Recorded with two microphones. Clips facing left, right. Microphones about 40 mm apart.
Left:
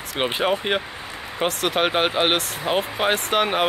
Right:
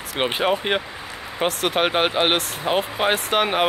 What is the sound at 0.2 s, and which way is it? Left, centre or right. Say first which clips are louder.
Speech: right 1 dB; centre.